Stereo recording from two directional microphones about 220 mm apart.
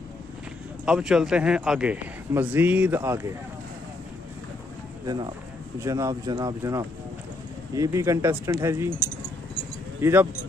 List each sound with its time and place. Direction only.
0.8 s a man's voice: 5° right (ahead or behind)
5.0 s speech: 20° right (ahead or behind)